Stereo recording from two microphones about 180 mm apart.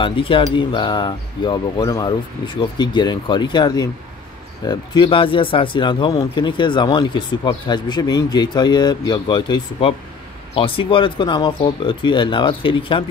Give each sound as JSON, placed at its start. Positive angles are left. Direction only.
{"t": 0.0, "sound": "speech", "side_deg": 30}